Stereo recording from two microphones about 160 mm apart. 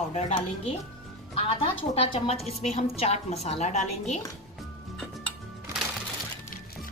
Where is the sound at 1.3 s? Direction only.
35° left (ahead or behind).